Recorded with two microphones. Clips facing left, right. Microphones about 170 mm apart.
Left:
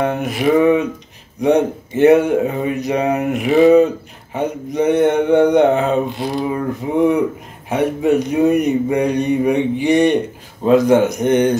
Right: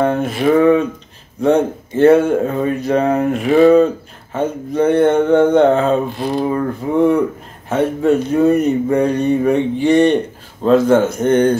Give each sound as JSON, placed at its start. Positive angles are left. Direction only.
{"t": 0.0, "sound": "speech", "side_deg": 15}